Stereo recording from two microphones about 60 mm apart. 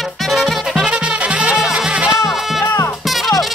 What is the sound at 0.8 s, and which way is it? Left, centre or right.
Music, right.